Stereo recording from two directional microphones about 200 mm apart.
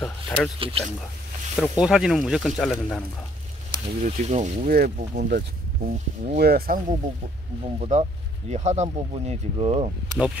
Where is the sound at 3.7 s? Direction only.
35° right (ahead or behind).